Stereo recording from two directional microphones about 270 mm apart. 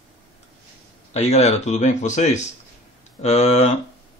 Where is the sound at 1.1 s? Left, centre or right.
Left.